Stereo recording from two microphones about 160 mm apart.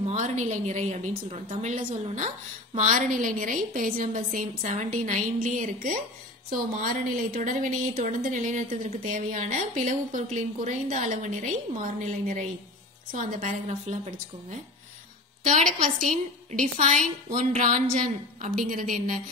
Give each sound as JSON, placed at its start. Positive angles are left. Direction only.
{"t": 0.0, "sound": "a woman's voice", "side_deg": -50}